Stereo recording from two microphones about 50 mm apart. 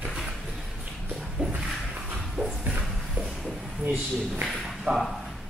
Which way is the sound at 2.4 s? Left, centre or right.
Right.